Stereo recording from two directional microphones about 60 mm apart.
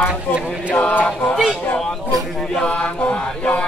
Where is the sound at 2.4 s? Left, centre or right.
Centre.